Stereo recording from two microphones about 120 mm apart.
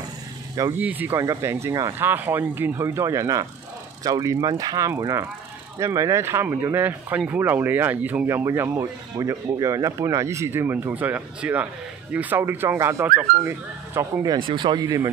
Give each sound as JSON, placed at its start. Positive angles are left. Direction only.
{"t": 0.7, "sound": "speech", "side_deg": -15}
{"t": 1.2, "sound": "speech", "side_deg": -25}
{"t": 14.2, "sound": "speech", "side_deg": -40}